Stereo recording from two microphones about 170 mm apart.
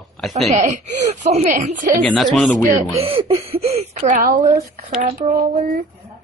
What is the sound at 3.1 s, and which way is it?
Speech, 30° right (ahead or behind).